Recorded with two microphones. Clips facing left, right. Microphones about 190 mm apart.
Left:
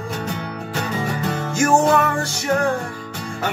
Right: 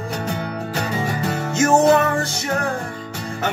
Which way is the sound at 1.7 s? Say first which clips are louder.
Right 3 dB; 20° right (ahead or behind).